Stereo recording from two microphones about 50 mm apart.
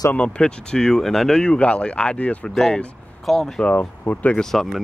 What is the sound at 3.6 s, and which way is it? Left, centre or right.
Speech, left.